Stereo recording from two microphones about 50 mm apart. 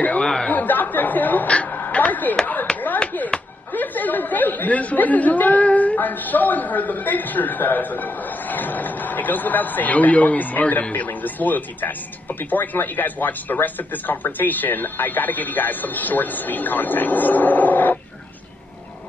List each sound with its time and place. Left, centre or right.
0.2 s chatter: centre
0.5 s chatter: left
1.5 s a sound: left
3.7 s speech: left
5.9 s a man's voice: left